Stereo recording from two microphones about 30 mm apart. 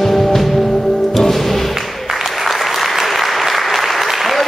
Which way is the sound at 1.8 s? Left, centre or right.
Centre.